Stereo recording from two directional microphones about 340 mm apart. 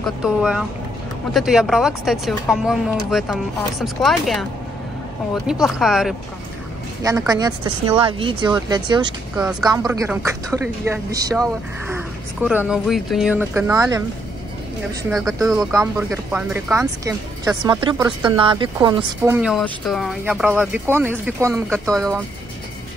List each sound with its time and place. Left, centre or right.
0.0 s speech: centre
9.5 s speech: centre
15.0 s speech: centre